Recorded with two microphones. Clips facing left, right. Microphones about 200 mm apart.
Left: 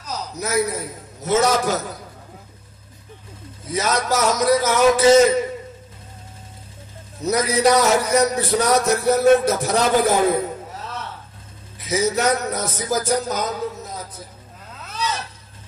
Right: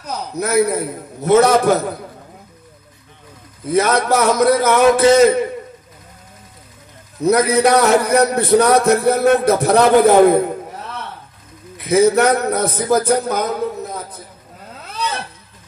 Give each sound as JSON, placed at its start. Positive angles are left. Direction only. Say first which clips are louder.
{"t": 0.0, "sound": "a man's voice", "louder": "right 5 dB", "side_deg": -60}
{"t": 3.6, "sound": "a man's voice", "louder": "right 7 dB", "side_deg": -60}
{"t": 7.2, "sound": "a man's voice", "louder": "right 4 dB", "side_deg": -60}
{"t": 14.9, "sound": "zipper", "louder": "right 2 dB", "side_deg": -60}